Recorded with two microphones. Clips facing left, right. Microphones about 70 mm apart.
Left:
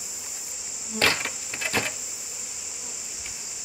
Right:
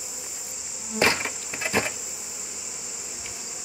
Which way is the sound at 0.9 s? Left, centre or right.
Centre.